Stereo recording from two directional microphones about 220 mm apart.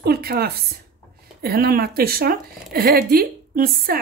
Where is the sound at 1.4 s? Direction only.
45° right (ahead or behind).